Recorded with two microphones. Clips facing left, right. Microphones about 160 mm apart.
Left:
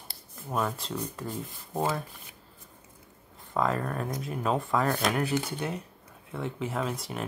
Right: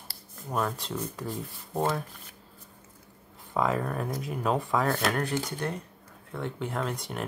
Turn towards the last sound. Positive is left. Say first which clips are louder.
# even
turn(degrees=0)  # may be behind; listen again after turning